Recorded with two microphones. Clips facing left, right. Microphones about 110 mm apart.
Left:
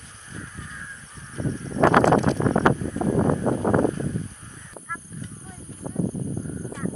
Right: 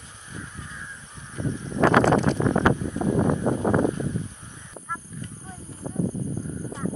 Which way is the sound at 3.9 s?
15° right (ahead or behind).